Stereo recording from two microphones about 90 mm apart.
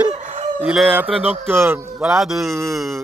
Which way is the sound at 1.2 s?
90° right.